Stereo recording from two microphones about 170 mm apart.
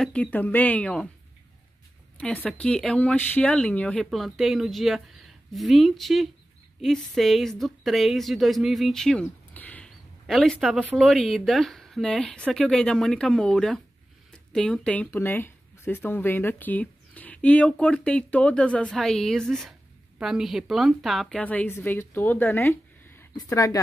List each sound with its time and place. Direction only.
0.0 s speech: 10° left (ahead or behind)
2.1 s speech: 10° left (ahead or behind)